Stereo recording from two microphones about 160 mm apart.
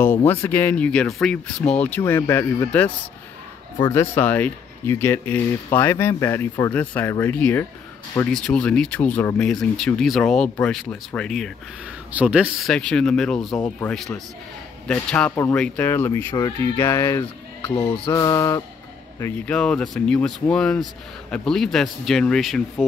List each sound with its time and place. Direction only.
0.0 s speech: 15° left (ahead or behind)
3.9 s speech: 15° left (ahead or behind)
12.1 s speech: 5° right (ahead or behind)
12.7 s speech: 5° left (ahead or behind)
13.6 s speech: 15° left (ahead or behind)
13.9 s speech: centre (ahead or behind)
18.1 s music: 20° left (ahead or behind)
19.1 s speech: 20° left (ahead or behind)
19.5 s speech: 5° left (ahead or behind)